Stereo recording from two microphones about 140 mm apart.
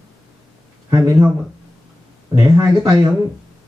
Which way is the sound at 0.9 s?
25° right (ahead or behind).